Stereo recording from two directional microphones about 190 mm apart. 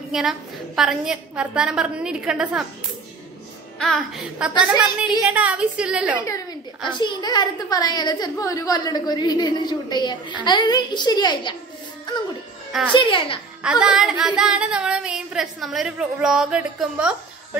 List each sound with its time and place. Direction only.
0.1 s music: centre (ahead or behind)
3.8 s music: centre (ahead or behind)
5.2 s a woman's voice: 5° right (ahead or behind)
6.9 s a woman's voice: 25° left (ahead or behind)
12.9 s a woman's voice: 25° left (ahead or behind)
13.6 s music: 5° right (ahead or behind)